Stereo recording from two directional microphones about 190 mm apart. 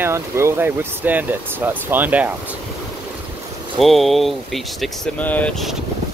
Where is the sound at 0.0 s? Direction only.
15° right (ahead or behind).